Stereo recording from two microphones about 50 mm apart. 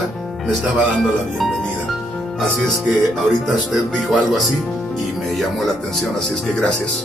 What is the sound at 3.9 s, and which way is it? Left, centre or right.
Speech, centre.